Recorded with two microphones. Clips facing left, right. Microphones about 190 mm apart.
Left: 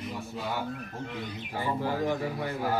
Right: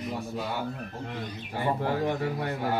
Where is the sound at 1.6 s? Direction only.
65° right (ahead or behind).